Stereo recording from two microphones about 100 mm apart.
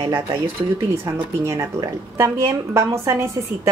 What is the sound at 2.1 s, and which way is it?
Speech, 30° right (ahead or behind).